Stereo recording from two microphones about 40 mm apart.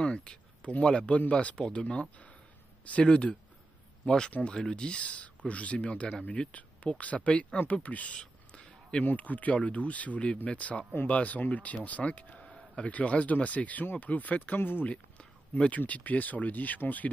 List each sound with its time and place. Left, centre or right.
0.0 s speech: left
8.2 s a sound: left
9.0 s speech: left
14.6 s speech: left
14.9 s a sound: left
15.9 s speech: left